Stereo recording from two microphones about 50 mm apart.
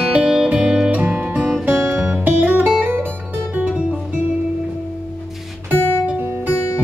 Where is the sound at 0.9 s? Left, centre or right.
Right.